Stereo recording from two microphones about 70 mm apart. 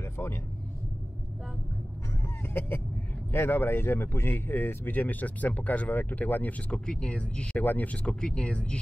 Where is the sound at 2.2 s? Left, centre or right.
Left.